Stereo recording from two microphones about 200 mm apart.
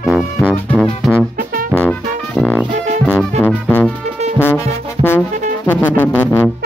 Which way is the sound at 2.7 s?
35° right (ahead or behind).